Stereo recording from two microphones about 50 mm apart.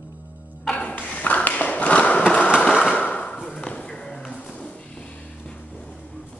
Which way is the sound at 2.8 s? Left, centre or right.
Left.